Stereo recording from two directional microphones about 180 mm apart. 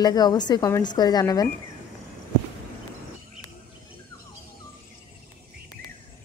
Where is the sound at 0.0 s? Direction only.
20° left (ahead or behind).